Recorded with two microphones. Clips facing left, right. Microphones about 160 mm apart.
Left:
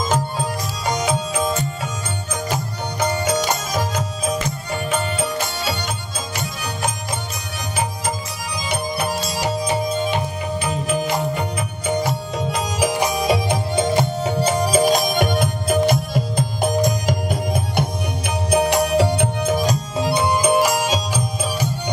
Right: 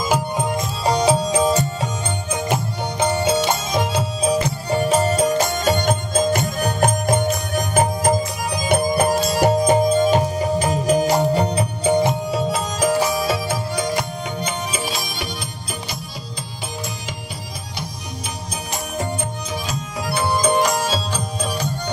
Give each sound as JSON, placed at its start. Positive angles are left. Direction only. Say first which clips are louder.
{"t": 0.8, "sound": "music", "louder": "right 5 dB", "side_deg": -30}
{"t": 2.5, "sound": "music", "louder": "right 2 dB", "side_deg": -25}
{"t": 12.8, "sound": "music", "louder": "right 1 dB", "side_deg": 15}
{"t": 18.5, "sound": "music", "louder": "left 14 dB", "side_deg": 70}
{"t": 19.4, "sound": "music", "louder": "left 8 dB", "side_deg": 45}
{"t": 20.0, "sound": "music", "louder": "left 1 dB", "side_deg": 20}